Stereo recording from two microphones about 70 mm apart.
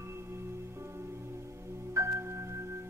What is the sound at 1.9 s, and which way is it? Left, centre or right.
Music, right.